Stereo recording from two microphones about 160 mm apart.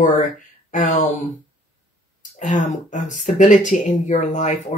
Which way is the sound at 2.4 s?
50° left (ahead or behind).